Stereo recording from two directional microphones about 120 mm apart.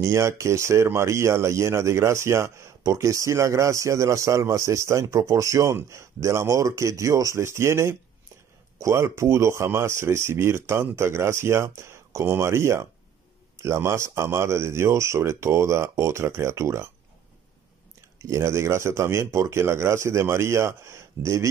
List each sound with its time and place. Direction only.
0.0 s speech: 25° right (ahead or behind)
18.2 s speech: 25° right (ahead or behind)